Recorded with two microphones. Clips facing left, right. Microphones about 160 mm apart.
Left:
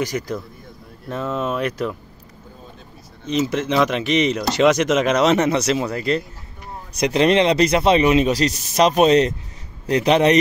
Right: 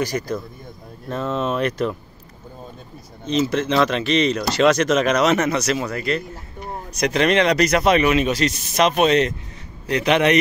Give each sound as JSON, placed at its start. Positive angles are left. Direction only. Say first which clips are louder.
{"t": 0.0, "sound": "speech", "louder": "right 1 dB", "side_deg": 20}
{"t": 3.3, "sound": "a man's voice", "louder": "right 1 dB", "side_deg": 15}